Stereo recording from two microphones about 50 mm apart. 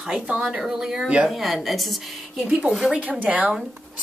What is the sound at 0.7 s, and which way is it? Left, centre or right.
Speech, centre.